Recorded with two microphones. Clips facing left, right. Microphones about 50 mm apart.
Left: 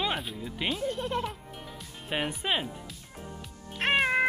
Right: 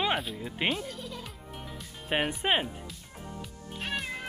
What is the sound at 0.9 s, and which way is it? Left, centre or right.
Speech, left.